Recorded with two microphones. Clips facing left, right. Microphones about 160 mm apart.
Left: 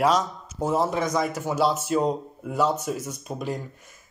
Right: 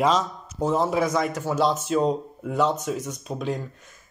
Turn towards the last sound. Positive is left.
turn(degrees=5)  # may be behind; listen again after turning